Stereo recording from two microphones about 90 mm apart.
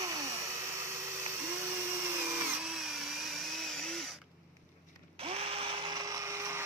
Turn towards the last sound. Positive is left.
turn(degrees=-35)  # may be behind; listen again after turning